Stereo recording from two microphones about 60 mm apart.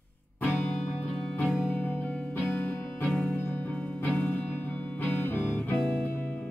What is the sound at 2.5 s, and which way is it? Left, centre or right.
Music, left.